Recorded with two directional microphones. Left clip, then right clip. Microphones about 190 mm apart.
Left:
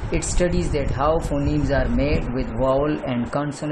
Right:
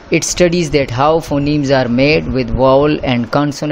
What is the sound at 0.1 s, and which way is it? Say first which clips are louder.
Speech: right 11 dB; 40° right (ahead or behind).